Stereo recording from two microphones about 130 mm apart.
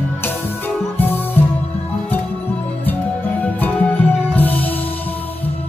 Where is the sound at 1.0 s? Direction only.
15° left (ahead or behind).